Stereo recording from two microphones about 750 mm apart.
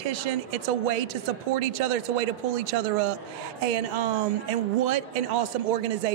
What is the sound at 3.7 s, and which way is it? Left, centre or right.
Speech, right.